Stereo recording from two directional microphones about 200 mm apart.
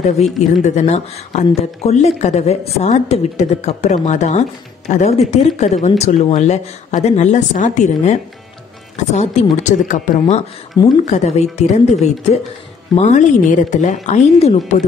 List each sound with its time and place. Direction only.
0.4 s speech: 35° left (ahead or behind)
10.8 s speech: 20° left (ahead or behind)
11.1 s speech: 35° left (ahead or behind)